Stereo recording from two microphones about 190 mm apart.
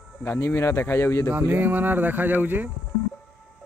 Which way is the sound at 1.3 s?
10° right (ahead or behind).